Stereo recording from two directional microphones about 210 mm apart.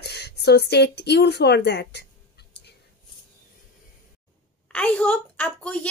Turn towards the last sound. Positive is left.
turn(degrees=5)  # may be behind; listen again after turning